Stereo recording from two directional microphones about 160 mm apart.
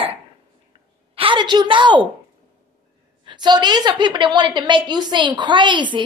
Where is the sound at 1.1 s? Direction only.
30° right (ahead or behind).